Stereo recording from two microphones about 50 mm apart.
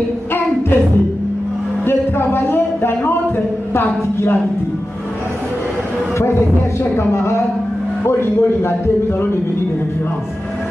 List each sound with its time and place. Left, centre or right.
1.9 s a sound: left
3.7 s speech: left
6.8 s a man's voice: left